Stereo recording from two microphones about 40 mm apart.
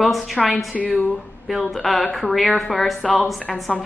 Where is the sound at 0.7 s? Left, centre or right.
Left.